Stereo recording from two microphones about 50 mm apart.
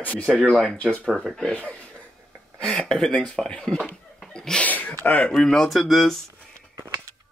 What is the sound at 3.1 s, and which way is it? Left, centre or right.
Speech, centre.